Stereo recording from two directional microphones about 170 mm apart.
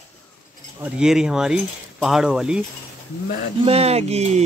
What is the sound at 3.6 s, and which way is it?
Speech, 35° right (ahead or behind).